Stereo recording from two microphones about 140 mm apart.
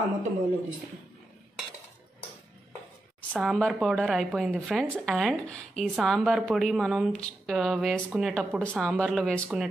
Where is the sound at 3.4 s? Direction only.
Centre (ahead or behind).